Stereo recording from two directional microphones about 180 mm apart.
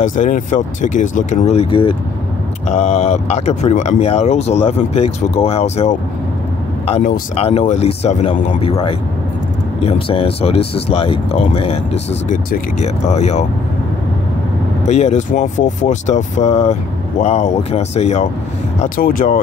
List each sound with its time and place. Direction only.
0.0 s speech: 45° left (ahead or behind)
12.3 s speech: 50° left (ahead or behind)
12.8 s speech: 40° left (ahead or behind)
14.9 s speech: 40° left (ahead or behind)
18.8 s speech: 50° left (ahead or behind)